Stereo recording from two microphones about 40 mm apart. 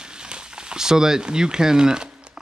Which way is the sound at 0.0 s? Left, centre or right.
Right.